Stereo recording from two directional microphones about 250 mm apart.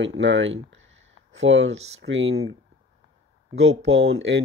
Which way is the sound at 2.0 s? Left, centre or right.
Right.